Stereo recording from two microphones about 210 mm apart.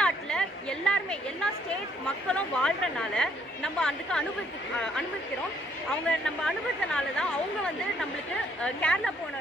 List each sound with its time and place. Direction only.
0.0 s chatter: 5° left (ahead or behind)
2.2 s speech: 5° left (ahead or behind)
5.9 s speech: 5° left (ahead or behind)